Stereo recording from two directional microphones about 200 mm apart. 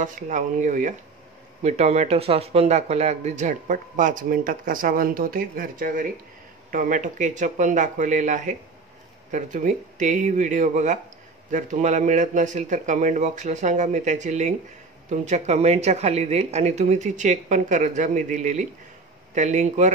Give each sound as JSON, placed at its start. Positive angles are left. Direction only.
{"t": 0.0, "sound": "speech", "side_deg": -40}